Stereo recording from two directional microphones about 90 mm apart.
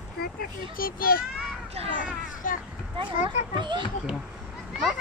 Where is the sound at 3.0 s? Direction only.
70° right (ahead or behind).